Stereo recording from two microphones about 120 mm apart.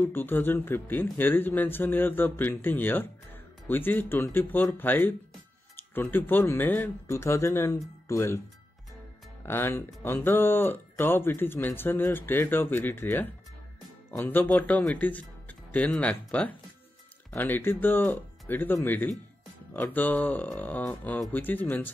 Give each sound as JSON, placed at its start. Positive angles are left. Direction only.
{"t": 0.0, "sound": "speech", "side_deg": 15}
{"t": 9.5, "sound": "speech", "side_deg": 20}